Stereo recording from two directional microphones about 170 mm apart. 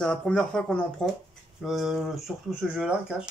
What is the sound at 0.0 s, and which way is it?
Speech, 5° left (ahead or behind).